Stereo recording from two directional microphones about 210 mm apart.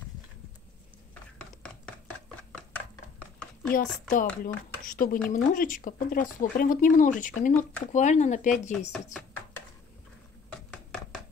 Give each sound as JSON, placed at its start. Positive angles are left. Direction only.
{"t": 3.7, "sound": "speech", "side_deg": 40}